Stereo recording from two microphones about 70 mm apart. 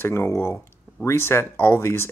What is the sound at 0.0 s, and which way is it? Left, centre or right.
Speech, left.